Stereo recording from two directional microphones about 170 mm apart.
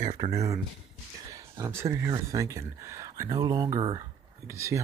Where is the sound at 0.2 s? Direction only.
20° right (ahead or behind).